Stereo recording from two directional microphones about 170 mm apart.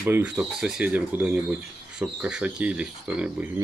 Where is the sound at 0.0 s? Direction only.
10° right (ahead or behind).